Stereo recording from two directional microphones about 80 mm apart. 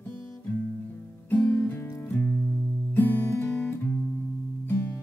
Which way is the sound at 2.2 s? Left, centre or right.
Centre.